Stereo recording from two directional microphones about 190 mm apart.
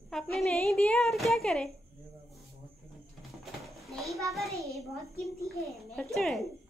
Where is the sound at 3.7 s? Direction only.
Centre (ahead or behind).